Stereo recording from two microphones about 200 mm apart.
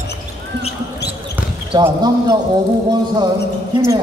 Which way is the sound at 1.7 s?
20° right (ahead or behind).